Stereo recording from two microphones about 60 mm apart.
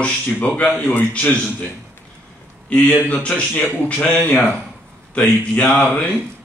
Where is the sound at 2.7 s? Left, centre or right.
Left.